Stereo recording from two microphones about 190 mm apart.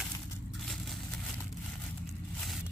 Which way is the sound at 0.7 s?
Centre (ahead or behind).